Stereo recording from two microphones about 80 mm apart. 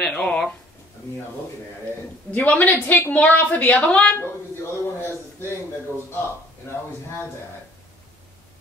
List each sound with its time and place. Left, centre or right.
0.1 s speech: centre
2.3 s a woman's voice: centre
4.2 s a sound: left